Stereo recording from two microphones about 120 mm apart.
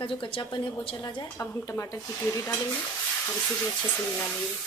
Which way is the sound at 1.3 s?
20° left (ahead or behind).